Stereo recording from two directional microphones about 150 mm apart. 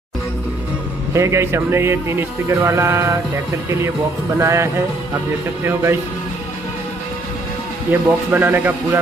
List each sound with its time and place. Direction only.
1.1 s a man's voice: 20° right (ahead or behind)
4.4 s a man's voice: 20° right (ahead or behind)
7.9 s a man's voice: 10° right (ahead or behind)